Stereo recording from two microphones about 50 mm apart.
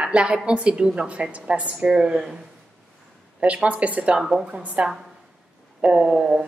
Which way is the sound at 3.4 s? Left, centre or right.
Right.